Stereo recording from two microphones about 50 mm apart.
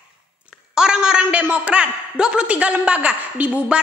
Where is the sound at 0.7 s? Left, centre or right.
Centre.